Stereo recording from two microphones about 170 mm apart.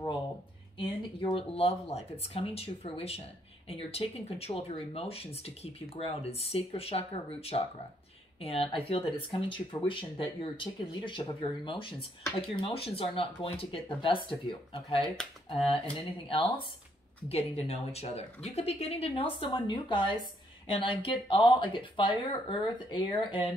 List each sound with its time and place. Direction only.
0.7 s speech: 30° left (ahead or behind)
15.0 s speech: centre (ahead or behind)
17.3 s speech: 35° left (ahead or behind)